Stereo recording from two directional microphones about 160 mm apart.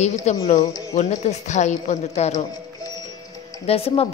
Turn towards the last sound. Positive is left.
turn(degrees=40)  # may be behind; listen again after turning